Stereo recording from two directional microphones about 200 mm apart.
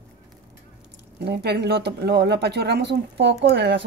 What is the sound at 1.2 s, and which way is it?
Speech, 55° right (ahead or behind).